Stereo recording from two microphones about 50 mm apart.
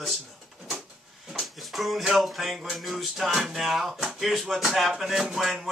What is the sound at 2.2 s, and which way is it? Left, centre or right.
Speech, centre.